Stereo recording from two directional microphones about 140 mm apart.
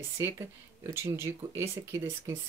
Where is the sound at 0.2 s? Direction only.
20° right (ahead or behind).